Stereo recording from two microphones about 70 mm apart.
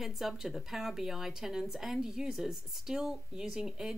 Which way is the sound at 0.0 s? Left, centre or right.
Centre.